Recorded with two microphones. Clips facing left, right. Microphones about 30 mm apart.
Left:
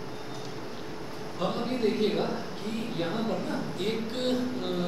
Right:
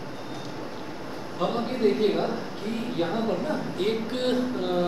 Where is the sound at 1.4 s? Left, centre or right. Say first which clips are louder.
Right 4 dB; centre.